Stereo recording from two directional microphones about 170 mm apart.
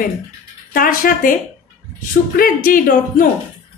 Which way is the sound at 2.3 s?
55° left (ahead or behind).